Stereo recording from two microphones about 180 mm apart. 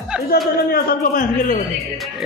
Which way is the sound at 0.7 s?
55° left (ahead or behind).